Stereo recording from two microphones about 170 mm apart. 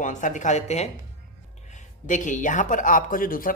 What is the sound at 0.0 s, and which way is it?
Speech, 50° left (ahead or behind).